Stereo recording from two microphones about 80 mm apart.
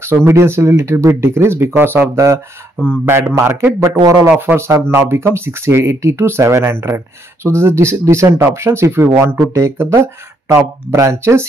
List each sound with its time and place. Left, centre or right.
0.0 s speech: right
2.1 s speech: right